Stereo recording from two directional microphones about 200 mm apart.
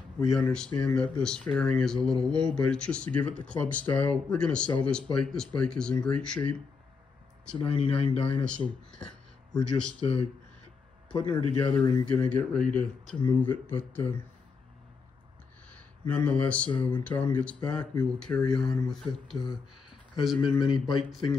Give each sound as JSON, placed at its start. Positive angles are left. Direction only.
{"t": 0.2, "sound": "speech", "side_deg": 0}
{"t": 7.5, "sound": "speech", "side_deg": 25}
{"t": 8.5, "sound": "speech", "side_deg": 5}
{"t": 9.9, "sound": "speech", "side_deg": 30}
{"t": 12.1, "sound": "speech", "side_deg": 5}
{"t": 16.1, "sound": "speech", "side_deg": 5}
{"t": 20.3, "sound": "speech", "side_deg": 25}
{"t": 20.8, "sound": "speech", "side_deg": 0}